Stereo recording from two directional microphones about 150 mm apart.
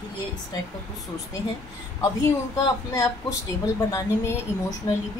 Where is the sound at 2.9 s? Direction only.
20° left (ahead or behind).